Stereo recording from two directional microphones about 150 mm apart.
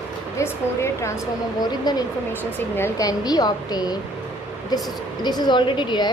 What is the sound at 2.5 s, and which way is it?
A woman's voice, 15° left (ahead or behind).